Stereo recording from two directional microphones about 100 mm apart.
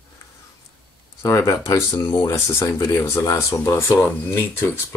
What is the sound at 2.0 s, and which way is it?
Speech, 40° left (ahead or behind).